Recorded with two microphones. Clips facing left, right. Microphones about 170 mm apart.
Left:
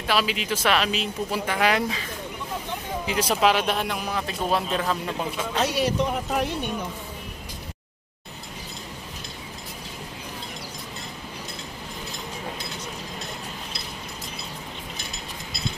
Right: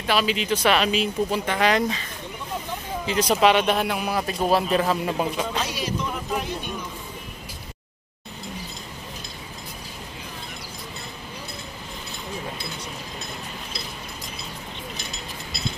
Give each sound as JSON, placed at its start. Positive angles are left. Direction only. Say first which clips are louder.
{"t": 0.0, "sound": "speech", "louder": "right 2 dB", "side_deg": 0}
{"t": 3.1, "sound": "speech", "louder": "right 3 dB", "side_deg": 5}
{"t": 5.1, "sound": "speech", "louder": "right 4 dB", "side_deg": -15}
{"t": 5.7, "sound": "speech", "louder": "left 5 dB", "side_deg": 65}